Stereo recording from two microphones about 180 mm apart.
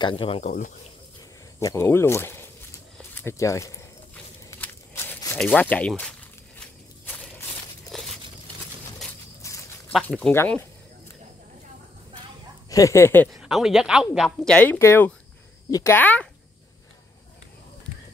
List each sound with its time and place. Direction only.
0.0 s speech: 30° left (ahead or behind)
0.5 s speech: 45° left (ahead or behind)
1.6 s speech: 15° left (ahead or behind)
3.2 s walk: 15° left (ahead or behind)
7.9 s a sound: centre (ahead or behind)
9.4 s a sound: 15° left (ahead or behind)
10.0 s speech: 5° left (ahead or behind)
12.6 s speech: 20° left (ahead or behind)
13.4 s speech: centre (ahead or behind)